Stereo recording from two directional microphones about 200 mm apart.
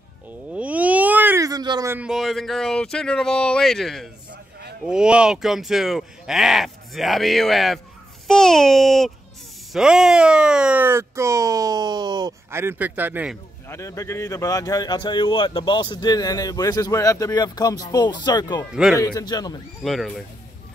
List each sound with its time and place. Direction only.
0.5 s speech: 5° right (ahead or behind)
4.3 s a sound: 55° right (ahead or behind)
4.8 s speech: 5° right (ahead or behind)
13.7 s speech: 15° left (ahead or behind)
18.7 s speech: 5° right (ahead or behind)
18.9 s speech: 20° left (ahead or behind)
19.8 s speech: centre (ahead or behind)